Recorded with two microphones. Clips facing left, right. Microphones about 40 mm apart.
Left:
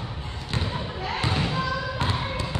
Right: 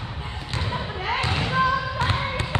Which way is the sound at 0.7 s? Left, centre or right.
Centre.